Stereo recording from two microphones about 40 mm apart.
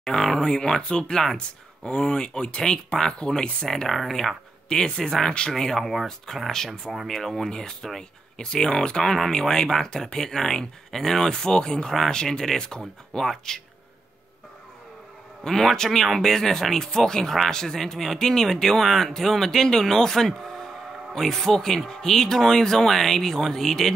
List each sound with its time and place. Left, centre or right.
0.0 s speech: centre
4.6 s speech: centre
15.4 s speech: centre